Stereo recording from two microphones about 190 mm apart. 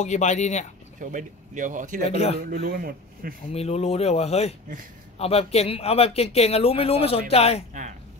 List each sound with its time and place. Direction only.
0.0 s speech: 40° left (ahead or behind)
0.9 s speech: 45° right (ahead or behind)
2.0 s speech: 35° left (ahead or behind)
2.3 s speech: 50° right (ahead or behind)
3.5 s speech: 35° left (ahead or behind)